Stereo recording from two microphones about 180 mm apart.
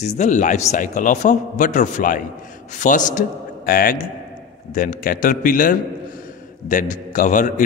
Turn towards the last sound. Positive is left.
turn(degrees=45)  # may be behind; listen again after turning